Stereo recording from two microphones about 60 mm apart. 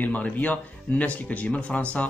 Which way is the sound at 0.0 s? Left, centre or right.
Left.